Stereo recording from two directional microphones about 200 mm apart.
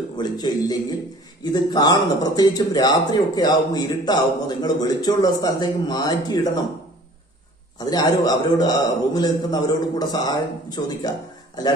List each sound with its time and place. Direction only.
0.2 s speech: 20° left (ahead or behind)
7.8 s speech: 20° left (ahead or behind)